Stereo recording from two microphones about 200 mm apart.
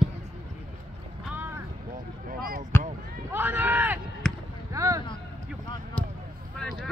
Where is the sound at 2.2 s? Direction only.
45° right (ahead or behind).